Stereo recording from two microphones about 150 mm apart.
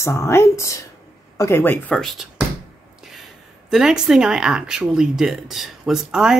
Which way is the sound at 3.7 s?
5° right (ahead or behind).